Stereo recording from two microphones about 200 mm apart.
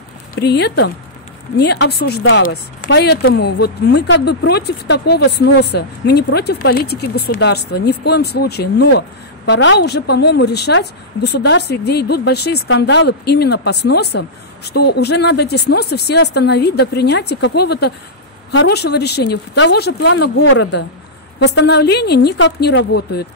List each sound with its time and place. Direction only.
0.4 s speech: 55° left (ahead or behind)
2.4 s speech: 40° left (ahead or behind)
2.9 s speech: 55° left (ahead or behind)